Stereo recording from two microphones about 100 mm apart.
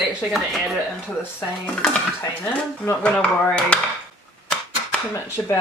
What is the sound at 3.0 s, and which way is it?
Speech, 10° left (ahead or behind).